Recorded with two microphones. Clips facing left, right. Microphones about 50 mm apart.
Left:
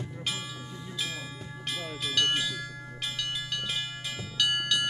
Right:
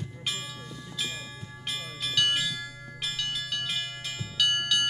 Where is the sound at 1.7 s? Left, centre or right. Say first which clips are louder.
Even; centre.